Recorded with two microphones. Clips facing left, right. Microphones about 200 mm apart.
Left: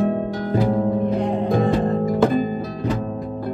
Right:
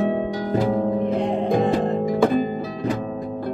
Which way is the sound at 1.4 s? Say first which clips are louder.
Left 1 dB; 20° right (ahead or behind).